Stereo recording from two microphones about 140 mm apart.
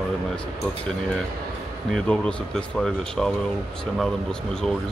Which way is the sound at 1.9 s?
10° left (ahead or behind).